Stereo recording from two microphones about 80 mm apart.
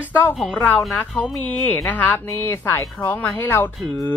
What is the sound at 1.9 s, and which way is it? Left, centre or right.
Speech, left.